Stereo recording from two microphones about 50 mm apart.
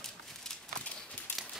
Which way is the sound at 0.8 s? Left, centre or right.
Left.